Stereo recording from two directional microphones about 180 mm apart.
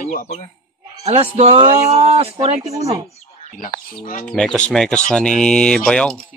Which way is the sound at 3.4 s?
45° left (ahead or behind).